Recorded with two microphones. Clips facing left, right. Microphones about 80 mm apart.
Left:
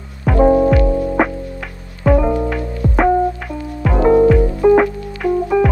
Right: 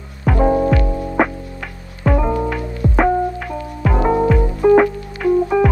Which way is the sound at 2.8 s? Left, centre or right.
Centre.